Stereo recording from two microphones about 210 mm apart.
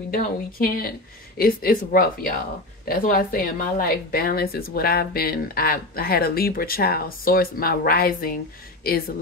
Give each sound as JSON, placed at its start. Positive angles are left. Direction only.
{"t": 0.1, "sound": "speech", "side_deg": 40}